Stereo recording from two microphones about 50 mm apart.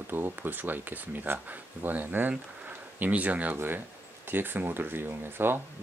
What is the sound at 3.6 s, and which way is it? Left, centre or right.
Speech, right.